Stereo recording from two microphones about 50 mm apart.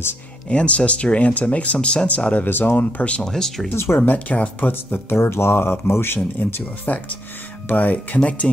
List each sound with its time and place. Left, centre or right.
0.5 s speech: left
3.2 s speech: centre
3.7 s speech: left
4.0 s speech: left
5.2 s speech: left